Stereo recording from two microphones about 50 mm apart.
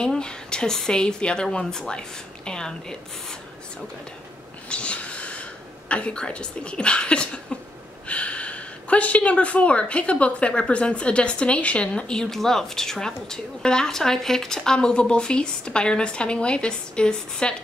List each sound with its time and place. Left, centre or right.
0.0 s speech: centre
4.6 s a sound: left
5.9 s speech: left